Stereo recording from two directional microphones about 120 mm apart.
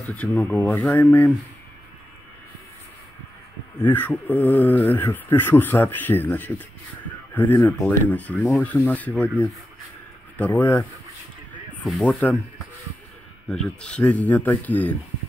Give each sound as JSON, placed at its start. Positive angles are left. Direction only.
{"t": 0.1, "sound": "speech", "side_deg": 15}
{"t": 3.8, "sound": "speech", "side_deg": 15}
{"t": 8.4, "sound": "speech", "side_deg": 0}
{"t": 8.6, "sound": "speech", "side_deg": 15}
{"t": 10.3, "sound": "speech", "side_deg": 15}
{"t": 11.8, "sound": "speech", "side_deg": 0}
{"t": 13.5, "sound": "speech", "side_deg": 5}